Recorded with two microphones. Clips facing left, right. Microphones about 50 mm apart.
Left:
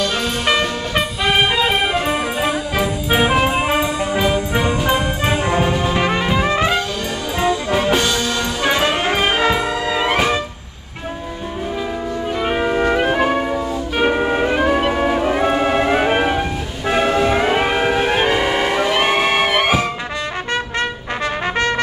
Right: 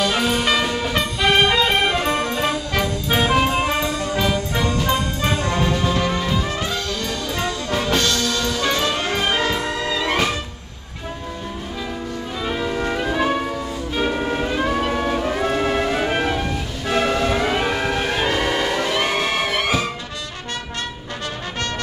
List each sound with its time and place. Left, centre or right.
0.0 s music: centre
1.2 s music: centre
6.0 s music: left
6.5 s brass instrument: left
7.3 s brass instrument: centre
12.4 s music: left
13.2 s music: left
14.5 s music: left